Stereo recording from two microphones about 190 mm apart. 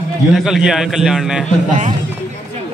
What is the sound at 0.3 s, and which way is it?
A man's voice, centre (ahead or behind).